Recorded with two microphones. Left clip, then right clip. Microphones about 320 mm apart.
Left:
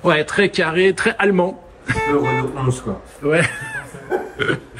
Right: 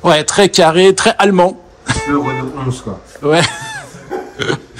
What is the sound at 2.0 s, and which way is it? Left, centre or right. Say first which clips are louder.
Speech: even; centre.